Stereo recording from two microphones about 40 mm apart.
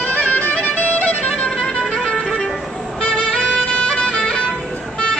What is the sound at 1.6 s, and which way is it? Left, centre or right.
Music, centre.